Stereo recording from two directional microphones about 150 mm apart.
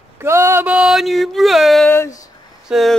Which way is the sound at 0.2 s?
15° right (ahead or behind).